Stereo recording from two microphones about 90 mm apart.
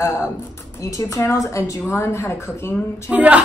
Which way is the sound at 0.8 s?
40° left (ahead or behind).